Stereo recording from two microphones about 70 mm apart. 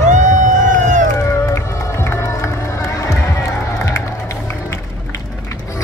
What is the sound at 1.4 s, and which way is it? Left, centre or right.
Music, left.